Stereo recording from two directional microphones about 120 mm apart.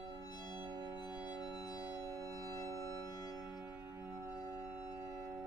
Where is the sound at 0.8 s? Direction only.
20° right (ahead or behind).